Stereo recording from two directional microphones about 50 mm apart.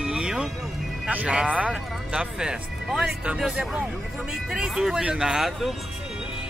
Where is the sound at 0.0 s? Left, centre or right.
Centre.